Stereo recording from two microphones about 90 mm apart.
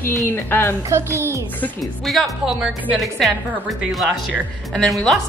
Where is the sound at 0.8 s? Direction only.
30° right (ahead or behind).